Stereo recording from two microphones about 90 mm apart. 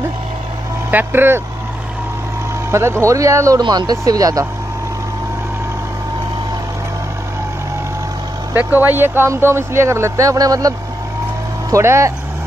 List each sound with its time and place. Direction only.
0.9 s speech: 25° right (ahead or behind)
2.7 s speech: 30° right (ahead or behind)
3.6 s speech: 50° right (ahead or behind)
8.5 s speech: 20° right (ahead or behind); by 10.7 s 40° right (ahead or behind)
11.7 s speech: 35° right (ahead or behind)